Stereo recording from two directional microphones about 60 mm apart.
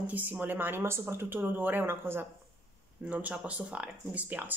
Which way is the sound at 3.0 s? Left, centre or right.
Right.